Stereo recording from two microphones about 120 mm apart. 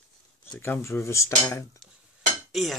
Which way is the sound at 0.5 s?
20° left (ahead or behind).